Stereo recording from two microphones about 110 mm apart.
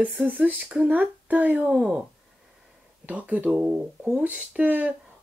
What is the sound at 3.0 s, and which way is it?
Speech, 15° right (ahead or behind).